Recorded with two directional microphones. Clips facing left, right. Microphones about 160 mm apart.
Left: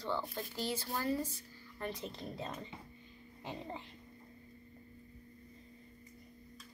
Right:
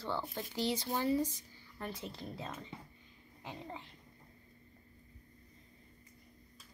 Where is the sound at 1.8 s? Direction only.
5° right (ahead or behind).